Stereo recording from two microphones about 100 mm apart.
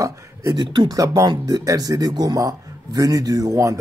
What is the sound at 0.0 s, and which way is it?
Speech, 30° right (ahead or behind).